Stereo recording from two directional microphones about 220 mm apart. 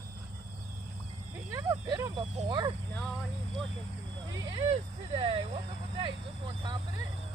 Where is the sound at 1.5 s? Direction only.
15° right (ahead or behind).